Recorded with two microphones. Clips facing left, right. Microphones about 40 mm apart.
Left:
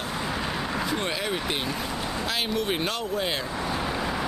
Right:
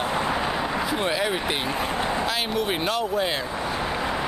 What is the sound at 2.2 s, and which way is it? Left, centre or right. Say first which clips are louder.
Vehicle: right 2 dB; centre.